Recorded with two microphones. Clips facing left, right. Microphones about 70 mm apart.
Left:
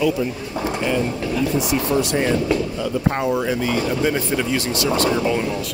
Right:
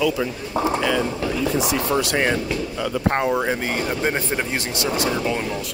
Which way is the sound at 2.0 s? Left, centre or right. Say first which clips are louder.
Left 1 dB; right.